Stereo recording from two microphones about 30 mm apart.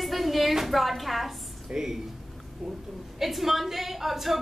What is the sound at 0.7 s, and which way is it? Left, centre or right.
Speech, centre.